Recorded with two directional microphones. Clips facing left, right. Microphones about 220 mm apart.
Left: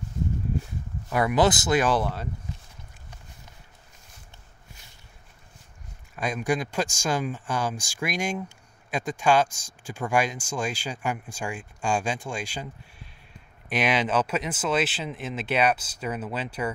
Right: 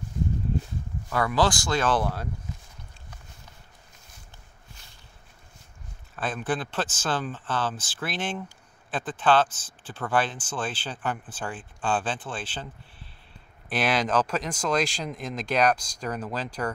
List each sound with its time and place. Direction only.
1.1 s speech: 20° left (ahead or behind)
6.1 s speech: 10° left (ahead or behind)
13.7 s speech: 10° left (ahead or behind)